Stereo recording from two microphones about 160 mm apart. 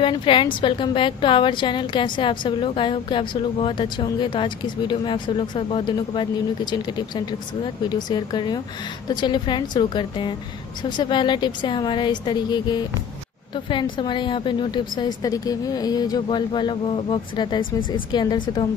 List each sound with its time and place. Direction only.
0.0 s a woman's voice: 30° left (ahead or behind)